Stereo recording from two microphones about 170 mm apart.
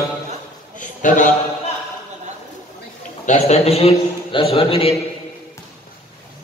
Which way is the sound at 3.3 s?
40° left (ahead or behind).